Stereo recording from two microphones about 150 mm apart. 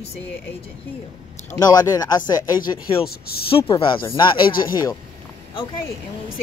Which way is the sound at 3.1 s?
90° left.